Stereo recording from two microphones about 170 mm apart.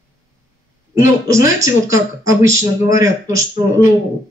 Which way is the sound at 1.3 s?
20° right (ahead or behind).